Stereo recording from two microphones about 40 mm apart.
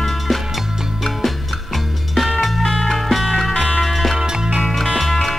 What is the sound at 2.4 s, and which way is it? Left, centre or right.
Music, centre.